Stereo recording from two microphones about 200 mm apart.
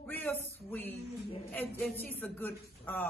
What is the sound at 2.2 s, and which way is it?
Speech, 10° left (ahead or behind).